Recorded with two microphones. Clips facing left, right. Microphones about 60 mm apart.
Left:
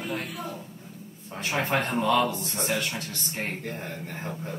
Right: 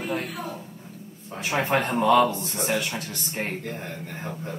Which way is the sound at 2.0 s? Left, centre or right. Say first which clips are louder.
Right 6 dB; right.